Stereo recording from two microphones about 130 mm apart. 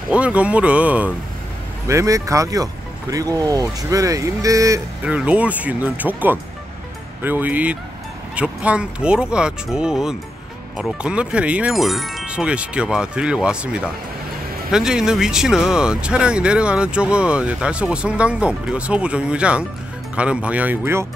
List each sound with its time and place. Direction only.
0.1 s speech: 10° right (ahead or behind)
1.9 s speech: 25° right (ahead or behind)
5.0 s speech: 10° right (ahead or behind)